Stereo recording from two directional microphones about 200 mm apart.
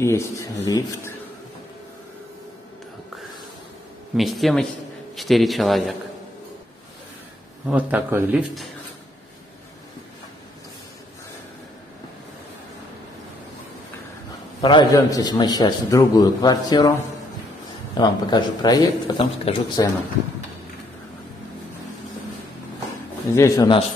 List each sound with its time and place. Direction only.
0.0 s speech: 15° left (ahead or behind)
4.2 s a man's voice: centre (ahead or behind)
7.6 s a man's voice: 10° right (ahead or behind)
14.6 s a man's voice: 20° left (ahead or behind)
17.9 s a man's voice: 20° left (ahead or behind)
23.3 s speech: 15° left (ahead or behind)